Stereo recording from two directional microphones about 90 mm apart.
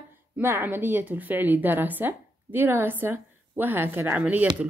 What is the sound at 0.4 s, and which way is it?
Speech, 25° right (ahead or behind).